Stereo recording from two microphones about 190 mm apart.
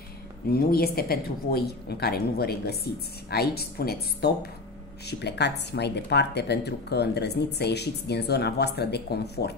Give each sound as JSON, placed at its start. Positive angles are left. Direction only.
{"t": 0.5, "sound": "speech", "side_deg": 50}